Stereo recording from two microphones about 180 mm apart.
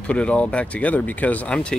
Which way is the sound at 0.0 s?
5° left (ahead or behind).